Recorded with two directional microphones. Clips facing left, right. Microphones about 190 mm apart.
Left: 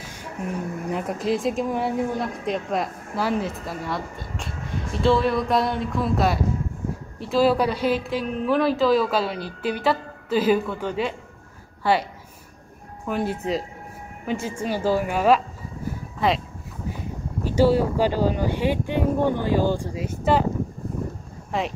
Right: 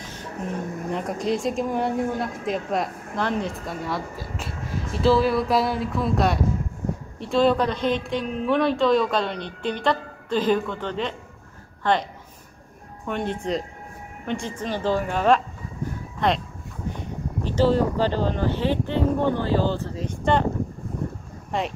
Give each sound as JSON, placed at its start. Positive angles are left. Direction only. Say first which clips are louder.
{"t": 0.0, "sound": "a sound", "louder": "right 1 dB", "side_deg": 10}
{"t": 0.8, "sound": "a woman's voice", "louder": "left 1 dB", "side_deg": 5}
{"t": 17.5, "sound": "speech", "louder": "left 1 dB", "side_deg": 10}
{"t": 21.5, "sound": "speech", "louder": "even", "side_deg": 0}